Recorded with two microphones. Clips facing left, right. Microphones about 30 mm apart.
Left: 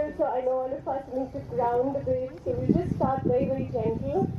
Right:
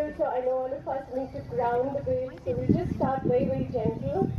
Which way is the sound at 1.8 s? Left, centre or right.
Centre.